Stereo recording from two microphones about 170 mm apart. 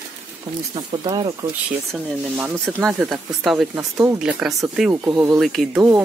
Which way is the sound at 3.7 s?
15° right (ahead or behind).